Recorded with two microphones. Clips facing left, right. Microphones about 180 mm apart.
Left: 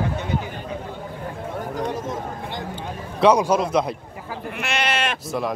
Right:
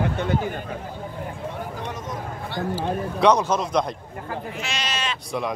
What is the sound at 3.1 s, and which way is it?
Speech, 10° left (ahead or behind).